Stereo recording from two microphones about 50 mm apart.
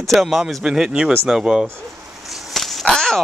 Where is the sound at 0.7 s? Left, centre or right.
Centre.